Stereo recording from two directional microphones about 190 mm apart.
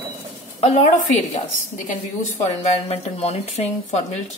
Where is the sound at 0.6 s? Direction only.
35° left (ahead or behind).